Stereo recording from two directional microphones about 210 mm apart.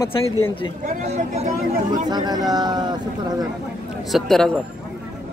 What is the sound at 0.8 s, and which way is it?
Speech, 30° right (ahead or behind).